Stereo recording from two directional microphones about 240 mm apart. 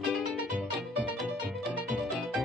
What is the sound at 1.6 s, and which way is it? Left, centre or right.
Music, centre.